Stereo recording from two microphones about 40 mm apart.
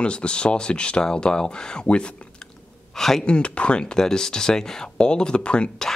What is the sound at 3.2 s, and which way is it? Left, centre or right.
Speech, left.